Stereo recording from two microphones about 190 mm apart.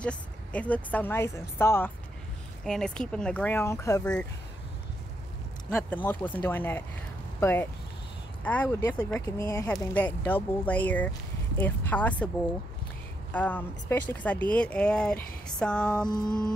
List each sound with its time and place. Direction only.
0.0 s speech: 5° left (ahead or behind)
5.7 s speech: 5° left (ahead or behind)
9.2 s speech: 20° left (ahead or behind)
13.3 s speech: 10° left (ahead or behind)